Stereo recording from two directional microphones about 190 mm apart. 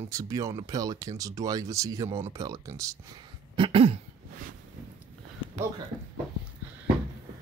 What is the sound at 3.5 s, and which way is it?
Speech, 30° right (ahead or behind).